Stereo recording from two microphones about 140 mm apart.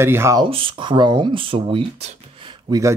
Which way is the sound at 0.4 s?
40° right (ahead or behind).